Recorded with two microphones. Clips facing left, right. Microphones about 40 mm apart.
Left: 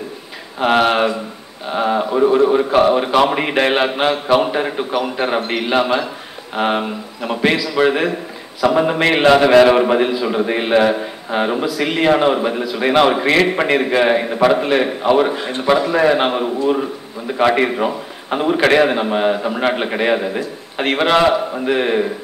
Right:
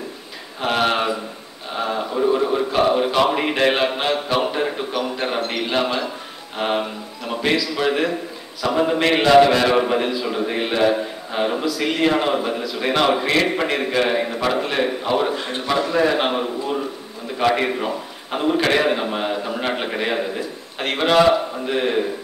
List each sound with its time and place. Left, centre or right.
0.6 s a man's voice: left
17.4 s a man's voice: left